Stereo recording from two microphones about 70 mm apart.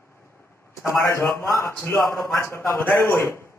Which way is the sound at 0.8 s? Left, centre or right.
Left.